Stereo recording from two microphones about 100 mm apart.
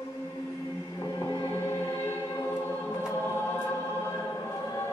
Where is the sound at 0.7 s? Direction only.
35° left (ahead or behind).